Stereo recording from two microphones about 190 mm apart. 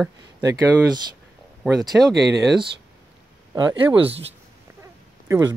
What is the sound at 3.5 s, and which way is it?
Speech, 25° right (ahead or behind).